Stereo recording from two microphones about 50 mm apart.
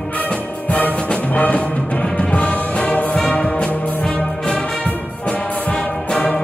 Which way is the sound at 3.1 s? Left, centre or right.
Centre.